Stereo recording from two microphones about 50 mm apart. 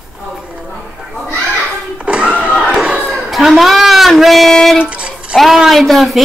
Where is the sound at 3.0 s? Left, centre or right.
Centre.